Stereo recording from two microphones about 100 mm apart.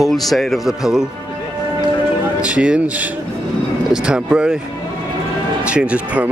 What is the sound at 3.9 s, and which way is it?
Speech, 10° right (ahead or behind).